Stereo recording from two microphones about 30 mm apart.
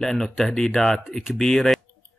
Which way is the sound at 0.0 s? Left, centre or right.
Centre.